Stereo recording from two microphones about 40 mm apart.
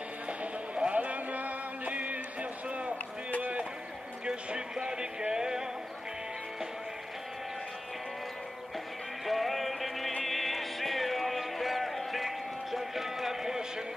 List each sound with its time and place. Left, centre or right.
0.3 s music: right
3.3 s a sound: right
4.5 s music: centre
9.2 s music: centre